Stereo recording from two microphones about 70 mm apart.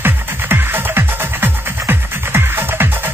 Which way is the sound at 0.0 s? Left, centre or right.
Right.